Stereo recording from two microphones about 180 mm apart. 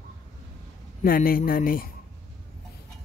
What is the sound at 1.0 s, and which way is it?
Speech, 55° left (ahead or behind).